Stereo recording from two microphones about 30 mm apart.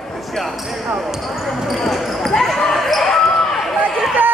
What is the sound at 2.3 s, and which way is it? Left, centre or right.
Basketball bounce, centre.